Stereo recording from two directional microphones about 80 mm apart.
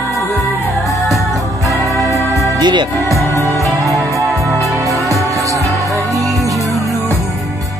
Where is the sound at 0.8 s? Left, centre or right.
Centre.